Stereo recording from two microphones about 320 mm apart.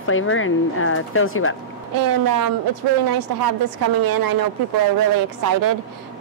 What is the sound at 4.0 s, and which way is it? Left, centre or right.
Speech, right.